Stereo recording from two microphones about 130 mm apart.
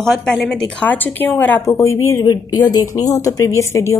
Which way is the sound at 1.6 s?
25° left (ahead or behind).